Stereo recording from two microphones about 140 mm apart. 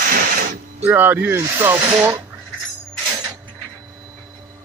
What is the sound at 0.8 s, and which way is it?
Speech, 15° right (ahead or behind).